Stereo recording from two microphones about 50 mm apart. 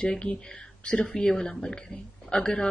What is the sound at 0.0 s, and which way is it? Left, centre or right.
Speech, left.